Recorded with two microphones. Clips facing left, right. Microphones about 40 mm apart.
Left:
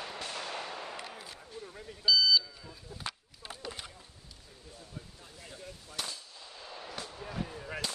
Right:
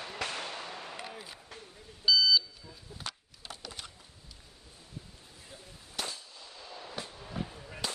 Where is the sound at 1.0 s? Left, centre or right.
Centre.